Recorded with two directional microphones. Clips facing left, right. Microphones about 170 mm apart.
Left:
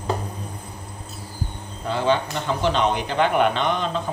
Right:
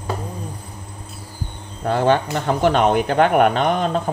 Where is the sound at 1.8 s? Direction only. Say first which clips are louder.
Right 4 dB; 55° right (ahead or behind).